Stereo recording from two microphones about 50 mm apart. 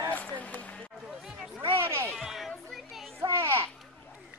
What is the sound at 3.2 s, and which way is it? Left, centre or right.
Children playing, right.